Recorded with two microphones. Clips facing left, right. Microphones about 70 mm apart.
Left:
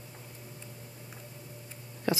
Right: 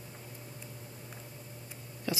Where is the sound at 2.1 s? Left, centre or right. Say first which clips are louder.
Left 5 dB; left.